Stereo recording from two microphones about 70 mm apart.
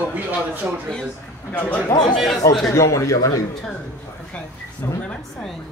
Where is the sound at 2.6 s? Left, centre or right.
Left.